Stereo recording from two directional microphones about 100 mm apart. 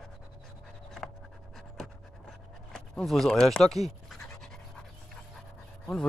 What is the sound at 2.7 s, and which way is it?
Speech, 5° left (ahead or behind).